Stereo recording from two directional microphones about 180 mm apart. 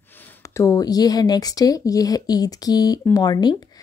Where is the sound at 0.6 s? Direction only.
20° left (ahead or behind).